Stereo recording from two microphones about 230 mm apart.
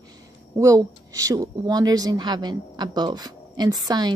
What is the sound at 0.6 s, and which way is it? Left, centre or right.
A woman's voice, centre.